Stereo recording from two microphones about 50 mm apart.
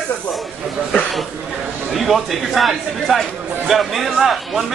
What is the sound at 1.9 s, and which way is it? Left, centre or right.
A man's voice, centre.